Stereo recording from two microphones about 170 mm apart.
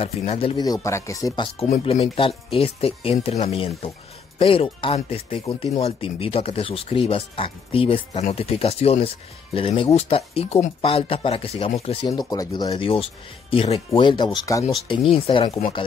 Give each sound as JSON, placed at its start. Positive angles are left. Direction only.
{"t": 0.0, "sound": "speech", "side_deg": 35}
{"t": 0.8, "sound": "speech", "side_deg": 15}
{"t": 12.1, "sound": "speech", "side_deg": 20}
{"t": 14.9, "sound": "speech", "side_deg": 35}